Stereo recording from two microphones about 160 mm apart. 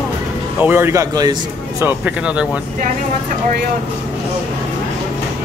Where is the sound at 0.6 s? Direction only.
15° right (ahead or behind).